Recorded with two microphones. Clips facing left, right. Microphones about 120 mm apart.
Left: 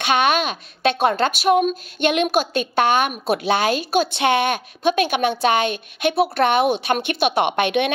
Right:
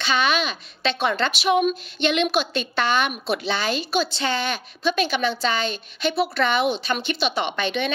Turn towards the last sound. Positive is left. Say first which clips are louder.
# left 6 dB
turn(degrees=60)  # may be behind; listen again after turning